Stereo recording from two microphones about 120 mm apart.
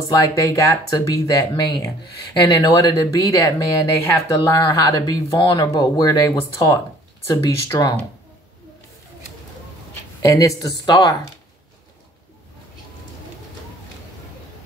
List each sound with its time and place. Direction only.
0.5 s speech: 25° left (ahead or behind)
10.2 s speech: 25° left (ahead or behind)